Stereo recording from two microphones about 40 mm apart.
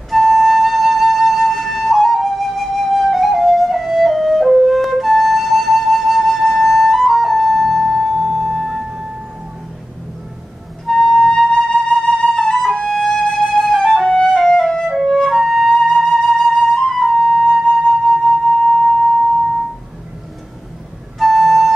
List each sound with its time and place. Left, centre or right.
0.1 s flute: centre
10.9 s flute: centre
15.0 s music: centre
15.3 s flute: centre
18.2 s music: centre
21.2 s flute: centre